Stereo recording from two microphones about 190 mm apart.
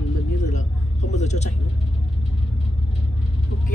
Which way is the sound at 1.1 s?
35° left (ahead or behind).